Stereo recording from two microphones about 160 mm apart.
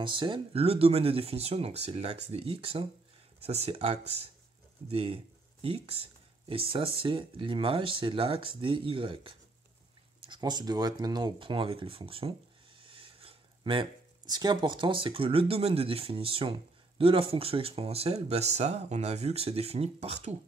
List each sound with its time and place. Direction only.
0.0 s speech: 30° right (ahead or behind)